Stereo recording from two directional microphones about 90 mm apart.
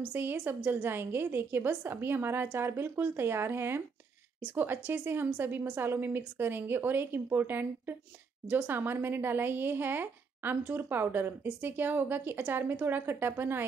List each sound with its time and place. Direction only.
0.1 s speech: 20° right (ahead or behind)